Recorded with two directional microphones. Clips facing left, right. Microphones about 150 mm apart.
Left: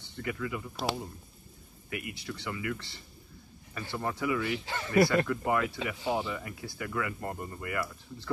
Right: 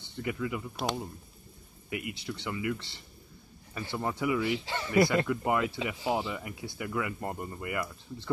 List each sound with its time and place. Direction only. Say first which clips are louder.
0.0 s speech: right 2 dB; 20° right (ahead or behind)
1.9 s speech: right 2 dB; 20° right (ahead or behind)